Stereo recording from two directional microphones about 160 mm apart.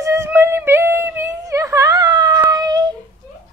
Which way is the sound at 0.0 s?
20° right (ahead or behind).